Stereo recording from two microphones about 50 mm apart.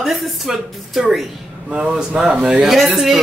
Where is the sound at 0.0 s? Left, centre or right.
Centre.